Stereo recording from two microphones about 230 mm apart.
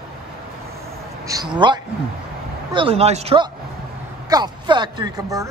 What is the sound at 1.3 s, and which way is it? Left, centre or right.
A man's voice, centre.